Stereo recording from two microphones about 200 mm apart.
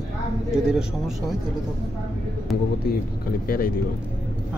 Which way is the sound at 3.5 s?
45° left (ahead or behind).